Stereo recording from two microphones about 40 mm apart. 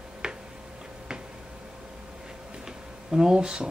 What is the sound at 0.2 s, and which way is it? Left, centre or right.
Tick-tock, centre.